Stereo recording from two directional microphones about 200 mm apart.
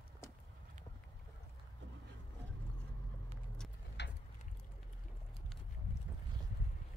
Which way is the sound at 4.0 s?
60° left (ahead or behind).